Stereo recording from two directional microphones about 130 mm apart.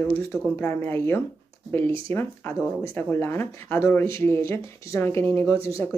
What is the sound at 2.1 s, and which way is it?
A woman's voice, 15° left (ahead or behind).